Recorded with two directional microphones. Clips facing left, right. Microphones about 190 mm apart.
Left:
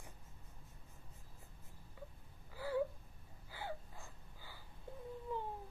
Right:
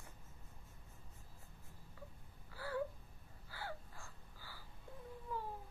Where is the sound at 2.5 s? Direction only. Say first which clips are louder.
Left 4 dB; 15° left (ahead or behind).